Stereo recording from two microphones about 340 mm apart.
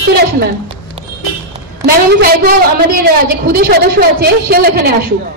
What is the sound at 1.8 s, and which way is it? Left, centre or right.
A woman's voice, right.